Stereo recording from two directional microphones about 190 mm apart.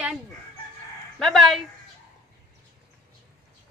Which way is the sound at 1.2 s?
Centre (ahead or behind).